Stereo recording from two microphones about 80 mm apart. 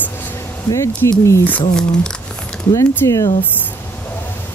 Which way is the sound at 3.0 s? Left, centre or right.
Left.